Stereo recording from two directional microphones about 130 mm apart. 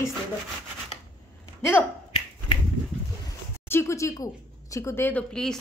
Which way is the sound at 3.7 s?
20° left (ahead or behind).